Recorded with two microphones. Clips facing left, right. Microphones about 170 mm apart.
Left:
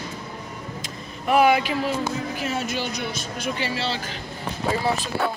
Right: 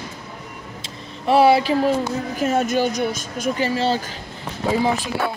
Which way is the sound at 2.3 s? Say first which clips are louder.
Right 8 dB; 45° right (ahead or behind).